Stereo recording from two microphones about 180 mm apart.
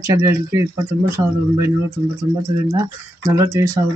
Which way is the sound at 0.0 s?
15° right (ahead or behind).